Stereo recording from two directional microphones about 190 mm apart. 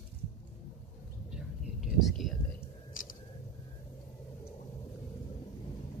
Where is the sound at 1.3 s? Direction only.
Centre (ahead or behind).